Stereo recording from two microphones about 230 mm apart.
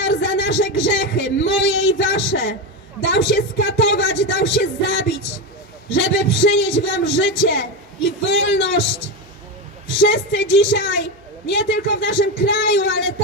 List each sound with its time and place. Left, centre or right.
0.0 s a man's voice: left
9.9 s a man's voice: left